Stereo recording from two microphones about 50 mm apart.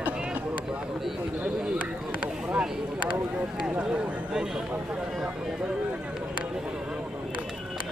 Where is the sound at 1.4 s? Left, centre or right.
Right.